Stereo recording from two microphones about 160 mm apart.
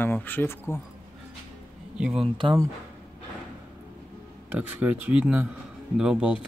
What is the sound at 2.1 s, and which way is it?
Speech, 30° right (ahead or behind).